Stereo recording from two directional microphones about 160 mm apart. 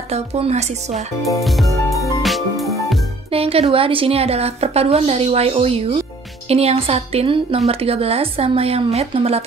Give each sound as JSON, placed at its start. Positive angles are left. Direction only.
{"t": 0.1, "sound": "a woman's voice", "side_deg": -40}
{"t": 2.2, "sound": "music", "side_deg": 0}
{"t": 3.3, "sound": "a woman's voice", "side_deg": -35}